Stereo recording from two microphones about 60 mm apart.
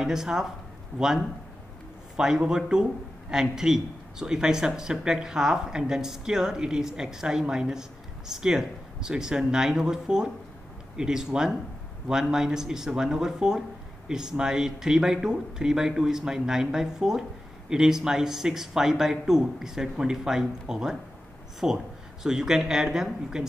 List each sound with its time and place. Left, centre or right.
0.0 s a man's voice: centre